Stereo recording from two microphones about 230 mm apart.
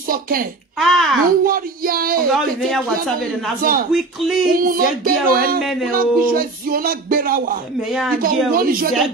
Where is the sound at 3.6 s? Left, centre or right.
Right.